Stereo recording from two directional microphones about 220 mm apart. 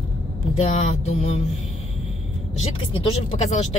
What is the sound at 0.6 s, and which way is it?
Speech, 30° left (ahead or behind).